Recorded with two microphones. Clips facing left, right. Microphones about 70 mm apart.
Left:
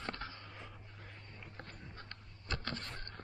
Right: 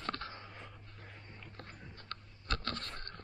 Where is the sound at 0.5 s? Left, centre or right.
Centre.